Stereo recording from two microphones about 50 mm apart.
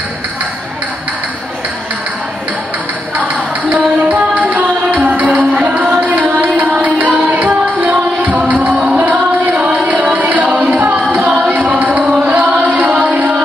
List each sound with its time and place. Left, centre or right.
3.7 s music: right
8.7 s music: centre
9.0 s music: right
12.0 s music: centre
12.3 s music: right